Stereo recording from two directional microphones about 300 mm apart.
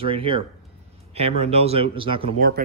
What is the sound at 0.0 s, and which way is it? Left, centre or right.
Speech, centre.